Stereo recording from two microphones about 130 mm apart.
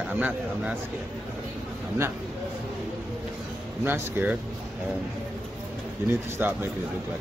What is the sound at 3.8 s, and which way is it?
Speech, 15° right (ahead or behind).